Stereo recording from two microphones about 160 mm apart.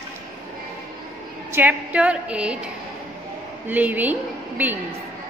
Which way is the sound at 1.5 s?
10° right (ahead or behind).